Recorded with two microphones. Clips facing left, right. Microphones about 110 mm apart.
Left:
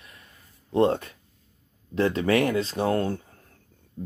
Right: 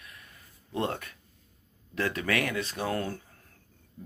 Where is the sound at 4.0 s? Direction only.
25° left (ahead or behind).